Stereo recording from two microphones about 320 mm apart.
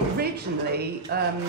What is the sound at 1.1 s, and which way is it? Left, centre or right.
Speech, right.